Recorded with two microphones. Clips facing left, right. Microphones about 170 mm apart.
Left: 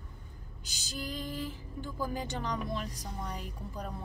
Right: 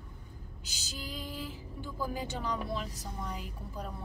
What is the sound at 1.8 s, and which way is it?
Speech, 10° right (ahead or behind).